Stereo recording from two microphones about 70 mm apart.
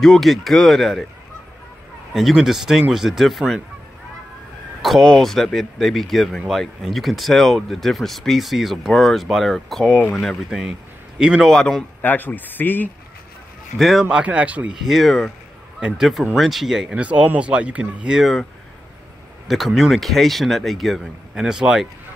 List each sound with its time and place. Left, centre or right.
0.0 s speech: centre
2.1 s speech: centre
5.0 s speech: centre
11.4 s a man's voice: centre
12.0 s speech: left
13.7 s speech: centre
14.0 s speech: centre
14.7 s speech: centre
17.0 s speech: centre
18.1 s speech: centre
19.4 s speech: centre